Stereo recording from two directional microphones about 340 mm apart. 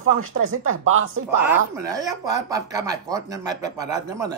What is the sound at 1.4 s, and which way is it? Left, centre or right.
Speech, centre.